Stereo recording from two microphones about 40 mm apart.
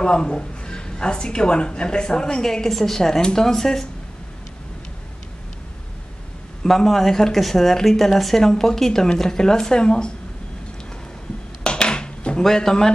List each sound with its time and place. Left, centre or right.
0.0 s speech: left
6.6 s speech: centre
11.6 s a sound: left
12.4 s speech: centre